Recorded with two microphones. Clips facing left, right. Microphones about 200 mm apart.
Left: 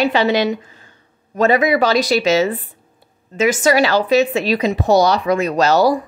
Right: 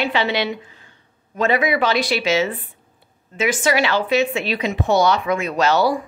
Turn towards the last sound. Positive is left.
turn(degrees=40)  # may be behind; listen again after turning